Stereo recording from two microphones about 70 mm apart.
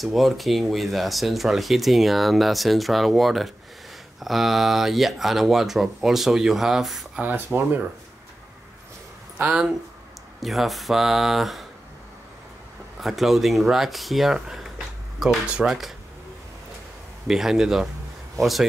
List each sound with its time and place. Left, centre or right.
0.0 s speech: centre
7.2 s speech: right
9.4 s speech: centre
10.4 s speech: centre
13.0 s speech: centre
17.3 s speech: centre